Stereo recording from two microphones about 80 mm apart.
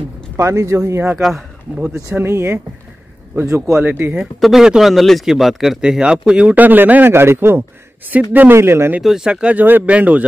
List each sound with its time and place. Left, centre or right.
0.4 s speech: right
1.2 s speech: centre
2.1 s speech: right
4.1 s speech: centre
8.5 s speech: right
9.0 s speech: centre